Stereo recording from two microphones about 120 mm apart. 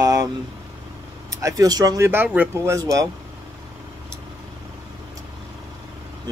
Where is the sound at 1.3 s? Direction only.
30° right (ahead or behind).